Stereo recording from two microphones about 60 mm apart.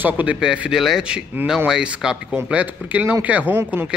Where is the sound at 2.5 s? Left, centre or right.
Right.